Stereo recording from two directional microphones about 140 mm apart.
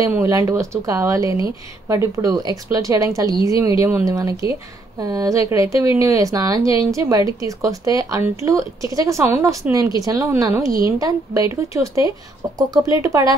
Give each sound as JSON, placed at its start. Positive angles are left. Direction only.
{"t": 0.0, "sound": "a woman's voice", "side_deg": -20}